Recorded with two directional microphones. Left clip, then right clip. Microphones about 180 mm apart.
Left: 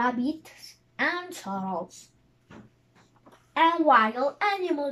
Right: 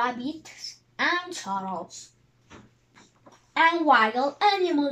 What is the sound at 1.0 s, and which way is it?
Speech, 5° left (ahead or behind).